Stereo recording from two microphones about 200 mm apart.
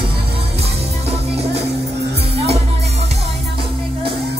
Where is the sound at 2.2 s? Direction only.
30° right (ahead or behind).